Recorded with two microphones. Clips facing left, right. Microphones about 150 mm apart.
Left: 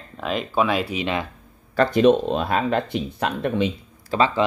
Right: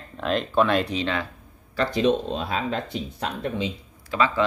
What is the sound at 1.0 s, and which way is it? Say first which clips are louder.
Speech: left 2 dB; 15° left (ahead or behind).